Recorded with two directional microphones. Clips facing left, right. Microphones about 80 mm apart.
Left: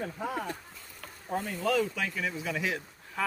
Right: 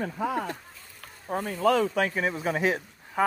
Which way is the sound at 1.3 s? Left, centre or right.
Right.